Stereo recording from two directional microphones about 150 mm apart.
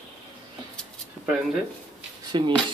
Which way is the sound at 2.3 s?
30° right (ahead or behind).